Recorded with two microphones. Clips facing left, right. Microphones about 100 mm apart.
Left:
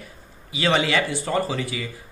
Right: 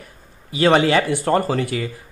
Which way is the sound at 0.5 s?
50° right (ahead or behind).